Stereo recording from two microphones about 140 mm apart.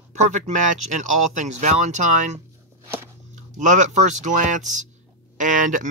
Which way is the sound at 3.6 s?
60° right (ahead or behind).